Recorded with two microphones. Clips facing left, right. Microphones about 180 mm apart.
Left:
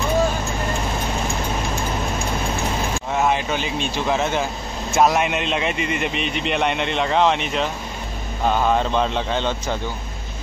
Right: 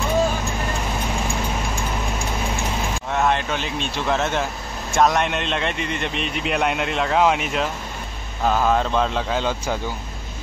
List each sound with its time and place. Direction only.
3.1 s a man's voice: 5° left (ahead or behind)